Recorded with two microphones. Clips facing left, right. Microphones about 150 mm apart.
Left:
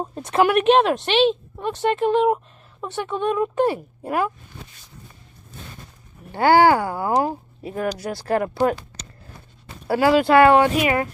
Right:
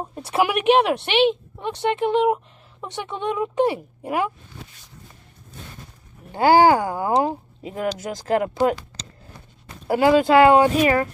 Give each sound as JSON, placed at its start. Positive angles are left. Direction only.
{"t": 0.1, "sound": "speech", "side_deg": -10}
{"t": 6.3, "sound": "speech", "side_deg": -20}